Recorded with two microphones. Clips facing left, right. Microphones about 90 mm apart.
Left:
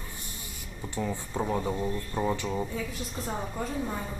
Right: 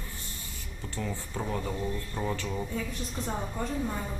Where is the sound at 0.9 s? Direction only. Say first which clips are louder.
Left 4 dB; 15° left (ahead or behind).